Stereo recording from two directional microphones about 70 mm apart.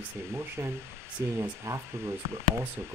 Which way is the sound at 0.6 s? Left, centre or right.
Right.